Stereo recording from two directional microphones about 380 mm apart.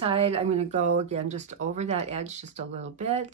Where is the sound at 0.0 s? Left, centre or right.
Centre.